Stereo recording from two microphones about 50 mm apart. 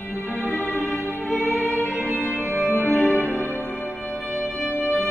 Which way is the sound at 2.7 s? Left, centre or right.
Left.